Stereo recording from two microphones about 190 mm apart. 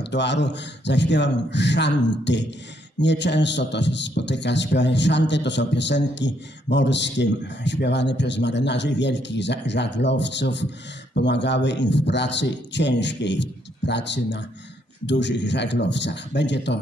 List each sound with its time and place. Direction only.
0.0 s a man's voice: 65° left (ahead or behind)